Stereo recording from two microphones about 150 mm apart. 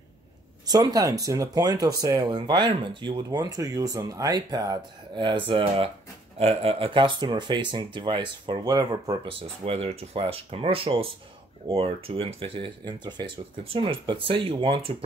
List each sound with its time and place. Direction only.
0.7 s speech: 25° right (ahead or behind)